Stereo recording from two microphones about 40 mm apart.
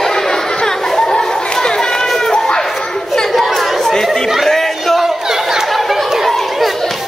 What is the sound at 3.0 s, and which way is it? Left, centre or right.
Chatter, centre.